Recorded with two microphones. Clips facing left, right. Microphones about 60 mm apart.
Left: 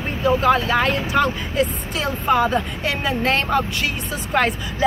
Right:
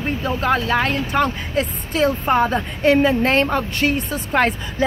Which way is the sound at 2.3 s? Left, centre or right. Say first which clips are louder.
Even; right.